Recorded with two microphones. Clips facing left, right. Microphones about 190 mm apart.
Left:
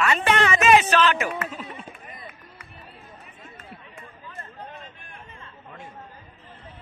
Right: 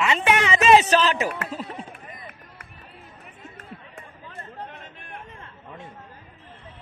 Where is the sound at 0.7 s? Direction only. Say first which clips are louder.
Right 2 dB; 35° right (ahead or behind).